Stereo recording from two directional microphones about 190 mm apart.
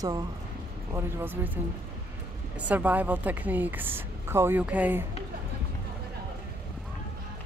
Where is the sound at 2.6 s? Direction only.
10° right (ahead or behind).